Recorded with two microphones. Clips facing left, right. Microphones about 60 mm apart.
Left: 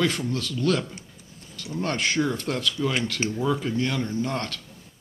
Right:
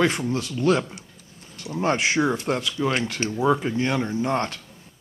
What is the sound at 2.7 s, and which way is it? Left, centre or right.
Speech, right.